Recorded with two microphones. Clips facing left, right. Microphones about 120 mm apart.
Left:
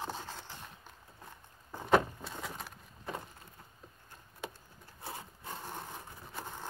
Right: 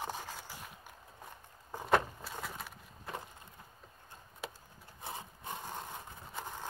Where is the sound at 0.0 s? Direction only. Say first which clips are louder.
Even; 15° right (ahead or behind).